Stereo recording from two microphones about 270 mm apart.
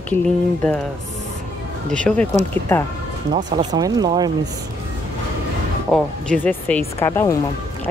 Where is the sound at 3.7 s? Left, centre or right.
Centre.